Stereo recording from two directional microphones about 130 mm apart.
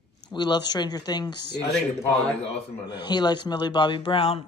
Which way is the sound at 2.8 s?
35° left (ahead or behind).